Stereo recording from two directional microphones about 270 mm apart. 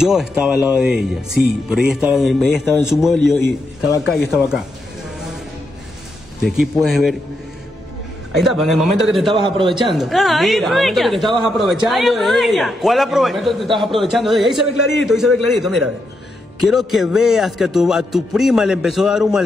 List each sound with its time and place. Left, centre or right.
0.0 s speech: centre
6.4 s speech: centre
8.5 s speech: centre
9.3 s a man's voice: centre
9.9 s speech: centre